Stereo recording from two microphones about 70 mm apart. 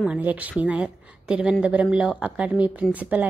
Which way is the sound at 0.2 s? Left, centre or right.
Right.